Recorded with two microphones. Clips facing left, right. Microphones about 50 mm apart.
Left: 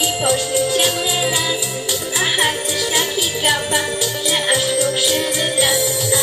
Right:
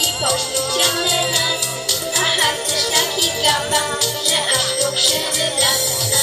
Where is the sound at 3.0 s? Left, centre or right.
Centre.